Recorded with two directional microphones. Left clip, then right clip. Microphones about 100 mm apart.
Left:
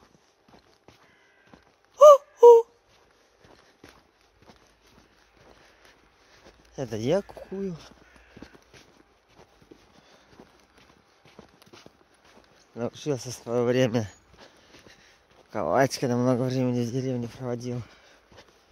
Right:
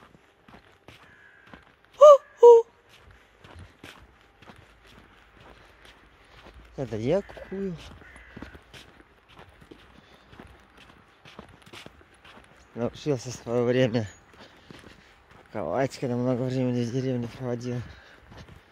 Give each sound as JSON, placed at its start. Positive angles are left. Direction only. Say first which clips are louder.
{"t": 2.0, "sound": "a sound", "louder": "even", "side_deg": 40}
{"t": 3.4, "sound": "walk", "louder": "right 5 dB", "side_deg": 0}
{"t": 6.7, "sound": "speech", "louder": "even", "side_deg": 40}
{"t": 11.7, "sound": "walk", "louder": "right 6 dB", "side_deg": 5}
{"t": 12.7, "sound": "speech", "louder": "right 1 dB", "side_deg": 15}
{"t": 15.7, "sound": "speech", "louder": "left 5 dB", "side_deg": 85}
{"t": 16.4, "sound": "speech", "louder": "left 1 dB", "side_deg": 45}